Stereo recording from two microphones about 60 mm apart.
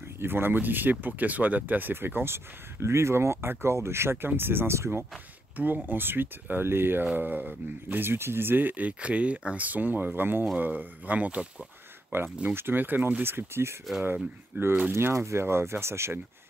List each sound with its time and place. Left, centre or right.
0.2 s speech: right
5.6 s speech: right
12.1 s speech: right